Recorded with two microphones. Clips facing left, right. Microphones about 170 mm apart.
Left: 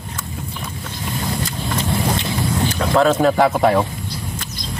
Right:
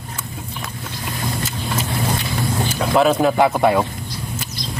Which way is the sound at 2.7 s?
5° right (ahead or behind).